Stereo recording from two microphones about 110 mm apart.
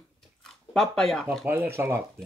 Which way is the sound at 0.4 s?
5° left (ahead or behind).